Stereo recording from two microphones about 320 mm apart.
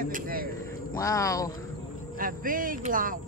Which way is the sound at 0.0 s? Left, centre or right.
Right.